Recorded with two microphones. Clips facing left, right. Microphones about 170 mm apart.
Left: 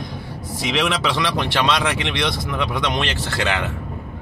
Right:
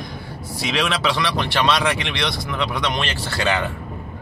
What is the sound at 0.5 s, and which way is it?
Speech, 15° left (ahead or behind).